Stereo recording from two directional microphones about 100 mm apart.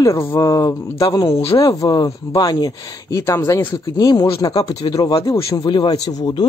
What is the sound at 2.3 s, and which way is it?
Speech, 45° left (ahead or behind).